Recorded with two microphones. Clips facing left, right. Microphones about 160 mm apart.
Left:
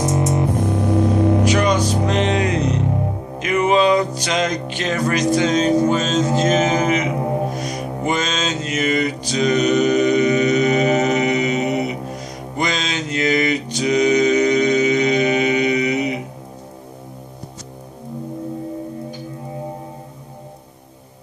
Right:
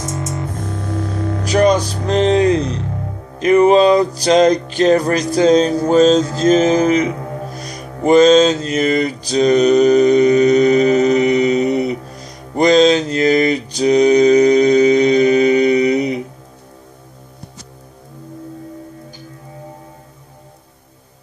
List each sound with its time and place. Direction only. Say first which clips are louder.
0.0 s music: left 6 dB; 15° left (ahead or behind)
1.5 s music: right 4 dB; 35° right (ahead or behind)
7.2 s music: left 6 dB; 20° left (ahead or behind)
8.0 s mantra: right 14 dB; 35° right (ahead or behind)
12.2 s music: right 11 dB; 35° right (ahead or behind)